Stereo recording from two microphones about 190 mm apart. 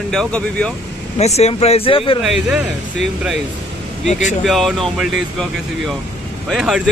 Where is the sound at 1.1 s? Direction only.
35° left (ahead or behind).